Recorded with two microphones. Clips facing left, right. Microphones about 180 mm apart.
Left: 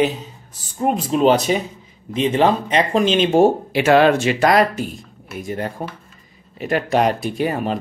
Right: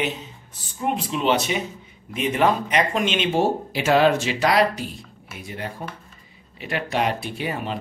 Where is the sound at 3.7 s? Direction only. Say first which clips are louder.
Left 4 dB; 65° left (ahead or behind).